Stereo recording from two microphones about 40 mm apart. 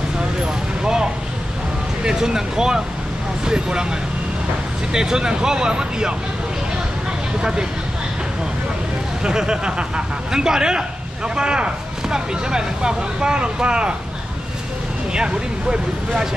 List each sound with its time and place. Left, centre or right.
2.0 s a man's voice: centre
4.9 s a man's voice: centre
9.2 s a man's voice: right
15.1 s speech: right